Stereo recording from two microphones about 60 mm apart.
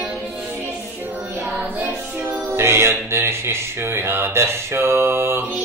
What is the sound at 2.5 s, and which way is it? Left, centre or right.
Music, right.